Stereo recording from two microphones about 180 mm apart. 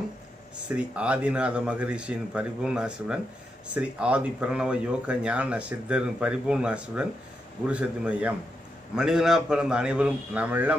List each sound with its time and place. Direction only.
0.7 s a man's voice: 5° right (ahead or behind)